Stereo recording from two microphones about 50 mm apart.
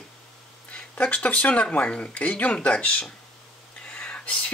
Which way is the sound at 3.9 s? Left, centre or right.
Left.